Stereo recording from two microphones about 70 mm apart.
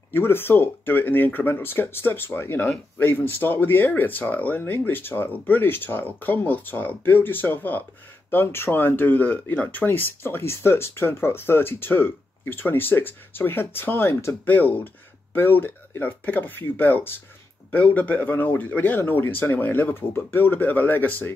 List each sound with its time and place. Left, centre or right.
0.1 s speech: left
9.8 s speech: left